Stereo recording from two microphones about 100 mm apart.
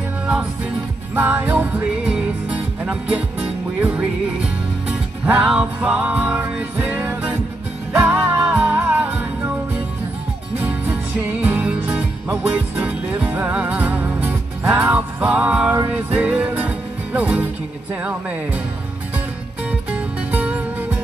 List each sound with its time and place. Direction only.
1.1 s music: 20° right (ahead or behind)
10.6 s music: 15° right (ahead or behind)
18.0 s speech: 15° right (ahead or behind)
19.7 s music: 15° right (ahead or behind)